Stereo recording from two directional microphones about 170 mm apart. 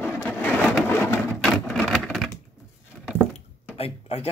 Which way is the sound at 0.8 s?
15° left (ahead or behind).